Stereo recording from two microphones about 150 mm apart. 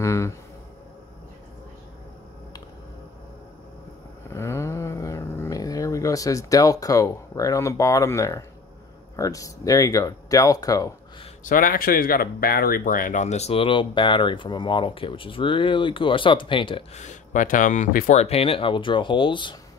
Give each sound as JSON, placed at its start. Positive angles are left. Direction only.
{"t": 0.0, "sound": "a sound", "side_deg": 20}
{"t": 4.3, "sound": "a sound", "side_deg": 15}
{"t": 9.1, "sound": "speech", "side_deg": 20}
{"t": 11.4, "sound": "speech", "side_deg": 70}
{"t": 17.0, "sound": "speech", "side_deg": 55}
{"t": 18.2, "sound": "speech", "side_deg": 40}